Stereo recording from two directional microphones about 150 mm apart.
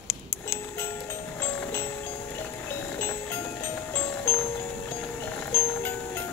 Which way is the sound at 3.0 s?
15° left (ahead or behind).